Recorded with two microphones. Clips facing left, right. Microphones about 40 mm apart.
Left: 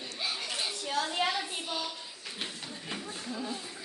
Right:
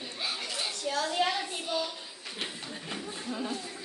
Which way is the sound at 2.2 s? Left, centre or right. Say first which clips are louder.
Right 2 dB; centre.